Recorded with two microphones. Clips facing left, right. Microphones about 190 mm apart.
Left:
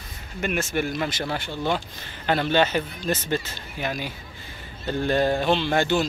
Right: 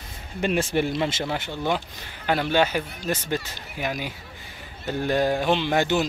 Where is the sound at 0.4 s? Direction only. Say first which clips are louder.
Right 3 dB; 30° right (ahead or behind).